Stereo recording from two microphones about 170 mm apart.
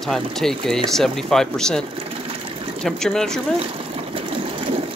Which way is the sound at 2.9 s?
5° left (ahead or behind).